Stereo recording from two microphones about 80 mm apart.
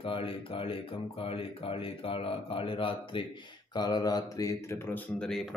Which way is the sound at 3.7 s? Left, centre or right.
Left.